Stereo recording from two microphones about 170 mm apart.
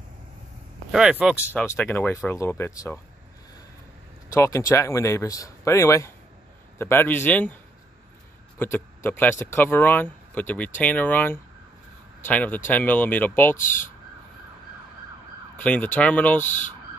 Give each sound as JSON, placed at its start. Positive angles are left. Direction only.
{"t": 0.9, "sound": "speech", "side_deg": -5}
{"t": 1.5, "sound": "speech", "side_deg": 10}
{"t": 4.3, "sound": "speech", "side_deg": 20}
{"t": 8.5, "sound": "speech", "side_deg": 15}
{"t": 15.5, "sound": "speech", "side_deg": 10}
{"t": 16.4, "sound": "speech", "side_deg": 45}